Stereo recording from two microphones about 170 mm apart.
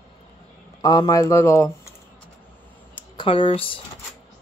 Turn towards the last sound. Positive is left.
turn(degrees=30)  # may be behind; listen again after turning